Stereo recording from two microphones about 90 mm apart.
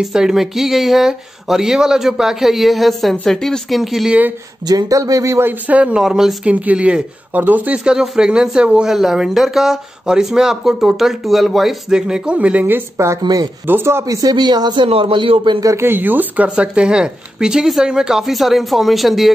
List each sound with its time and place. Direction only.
0.0 s speech: 5° right (ahead or behind)
4.6 s speech: 45° right (ahead or behind)
5.5 s speech: 15° right (ahead or behind)
6.5 s speech: 15° right (ahead or behind)
13.2 s speech: 45° right (ahead or behind)
13.7 s speech: 25° right (ahead or behind)
14.0 s speech: 40° right (ahead or behind)
14.3 s speech: 55° right (ahead or behind)
14.9 s speech: 85° right
15.6 s speech: 30° right (ahead or behind); by 19.3 s centre (ahead or behind)